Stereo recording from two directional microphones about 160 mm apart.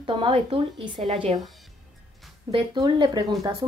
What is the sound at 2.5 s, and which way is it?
Speech, 30° right (ahead or behind).